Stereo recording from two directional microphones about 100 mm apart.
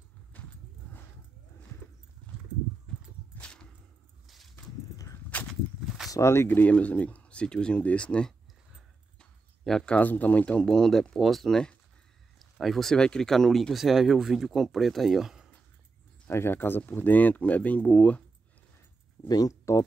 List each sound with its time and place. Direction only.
0.3 s a sound: 15° left (ahead or behind)
4.9 s a sound: 35° left (ahead or behind)
5.5 s walk: centre (ahead or behind)
6.1 s speech: 25° left (ahead or behind); by 15.5 s 5° right (ahead or behind)
16.3 s speech: 25° left (ahead or behind)
19.2 s speech: 40° left (ahead or behind)